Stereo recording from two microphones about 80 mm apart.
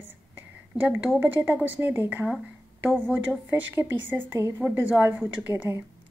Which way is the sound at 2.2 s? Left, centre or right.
Centre.